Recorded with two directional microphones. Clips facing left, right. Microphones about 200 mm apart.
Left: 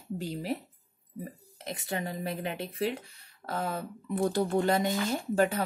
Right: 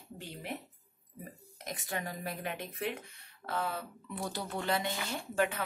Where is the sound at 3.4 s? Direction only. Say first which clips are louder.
Left 3 dB; 40° left (ahead or behind).